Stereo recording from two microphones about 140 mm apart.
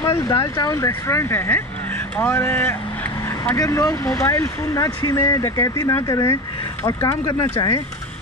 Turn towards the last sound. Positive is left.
turn(degrees=25)  # may be behind; listen again after turning